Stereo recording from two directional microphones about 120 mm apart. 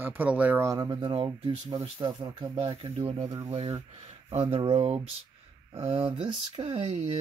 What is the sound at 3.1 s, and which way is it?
Speech, 50° right (ahead or behind).